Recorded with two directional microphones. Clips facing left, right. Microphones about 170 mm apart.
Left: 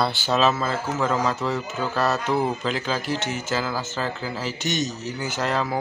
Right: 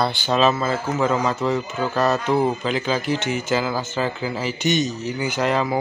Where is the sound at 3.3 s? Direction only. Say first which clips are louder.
Right 4 dB; 15° right (ahead or behind).